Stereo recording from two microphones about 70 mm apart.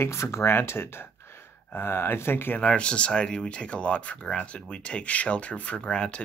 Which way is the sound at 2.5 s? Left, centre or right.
Centre.